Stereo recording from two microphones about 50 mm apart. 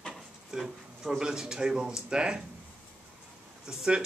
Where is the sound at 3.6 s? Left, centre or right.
Centre.